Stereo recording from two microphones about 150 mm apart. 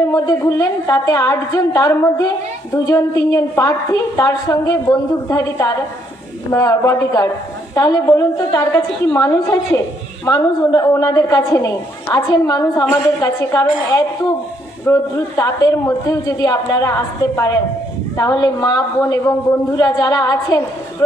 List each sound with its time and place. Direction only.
0.1 s a woman's voice: 20° left (ahead or behind)
18.1 s a woman's voice: 25° left (ahead or behind)